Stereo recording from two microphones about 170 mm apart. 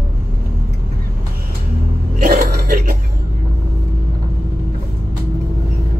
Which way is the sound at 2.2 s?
65° right (ahead or behind).